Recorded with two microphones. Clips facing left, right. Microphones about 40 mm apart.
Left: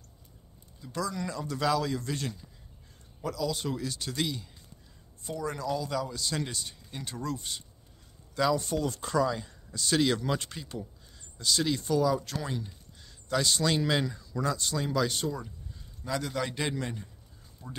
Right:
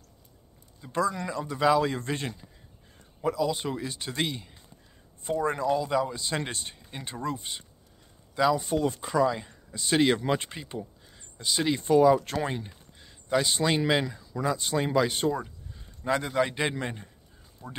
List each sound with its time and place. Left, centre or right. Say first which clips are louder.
0.7 s speech: right 6 dB; right
1.9 s speech: right 2 dB; right; by 8.7 s centre
8.7 s speech: right 3 dB; right
15.4 s a sound: even; right
16.3 s speech: right 5 dB; right